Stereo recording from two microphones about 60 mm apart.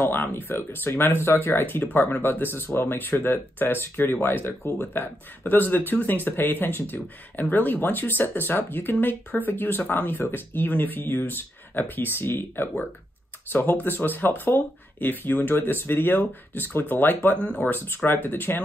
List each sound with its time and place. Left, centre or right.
0.0 s speech: left